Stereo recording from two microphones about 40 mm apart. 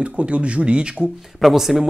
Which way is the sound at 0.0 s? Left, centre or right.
Right.